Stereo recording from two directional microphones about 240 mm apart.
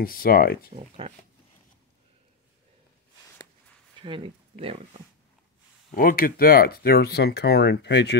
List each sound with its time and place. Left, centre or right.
0.0 s speech: left
0.7 s speech: right
4.0 s speech: right
5.9 s speech: left